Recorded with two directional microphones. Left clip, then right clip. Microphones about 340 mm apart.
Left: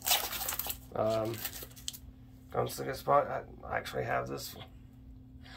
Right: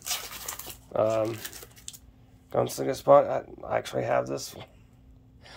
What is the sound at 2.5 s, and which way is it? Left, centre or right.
Speech, centre.